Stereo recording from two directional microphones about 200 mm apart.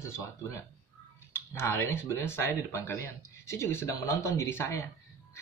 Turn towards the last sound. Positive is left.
turn(degrees=10)  # may be behind; listen again after turning